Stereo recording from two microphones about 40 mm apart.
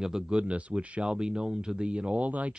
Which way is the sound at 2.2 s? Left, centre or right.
Right.